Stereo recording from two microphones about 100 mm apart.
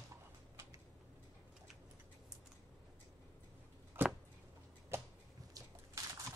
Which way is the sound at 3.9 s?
20° right (ahead or behind).